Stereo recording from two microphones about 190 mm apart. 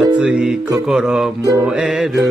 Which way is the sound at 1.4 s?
15° right (ahead or behind).